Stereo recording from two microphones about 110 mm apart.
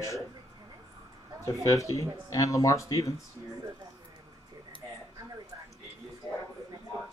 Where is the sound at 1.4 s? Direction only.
30° left (ahead or behind).